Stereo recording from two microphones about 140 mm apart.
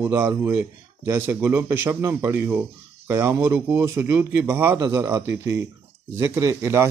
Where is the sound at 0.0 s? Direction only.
15° right (ahead or behind).